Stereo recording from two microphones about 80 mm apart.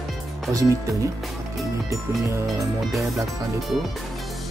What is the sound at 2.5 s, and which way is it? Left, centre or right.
Speech, centre.